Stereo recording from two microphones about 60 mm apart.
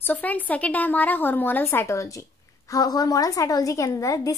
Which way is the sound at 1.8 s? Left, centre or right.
Left.